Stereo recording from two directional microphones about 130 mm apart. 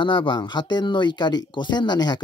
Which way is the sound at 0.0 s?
35° left (ahead or behind).